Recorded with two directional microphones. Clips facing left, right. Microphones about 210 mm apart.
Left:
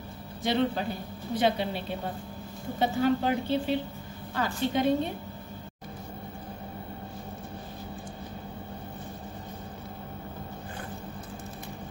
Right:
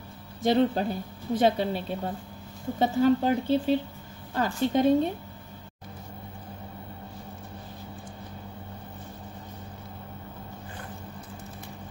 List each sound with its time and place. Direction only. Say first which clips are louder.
0.4 s a woman's voice: right 4 dB; 40° right (ahead or behind)